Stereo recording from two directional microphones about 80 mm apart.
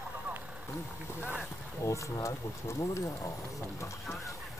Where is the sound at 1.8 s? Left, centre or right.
Left.